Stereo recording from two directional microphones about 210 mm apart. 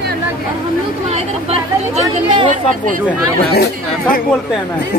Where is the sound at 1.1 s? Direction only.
30° right (ahead or behind).